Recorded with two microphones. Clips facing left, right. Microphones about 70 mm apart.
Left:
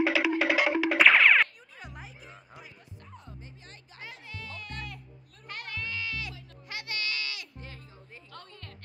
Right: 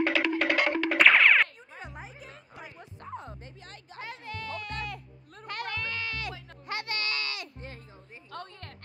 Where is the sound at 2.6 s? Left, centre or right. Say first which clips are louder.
Right 7 dB; right.